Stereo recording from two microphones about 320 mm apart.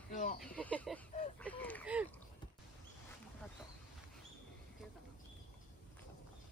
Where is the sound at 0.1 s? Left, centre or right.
Left.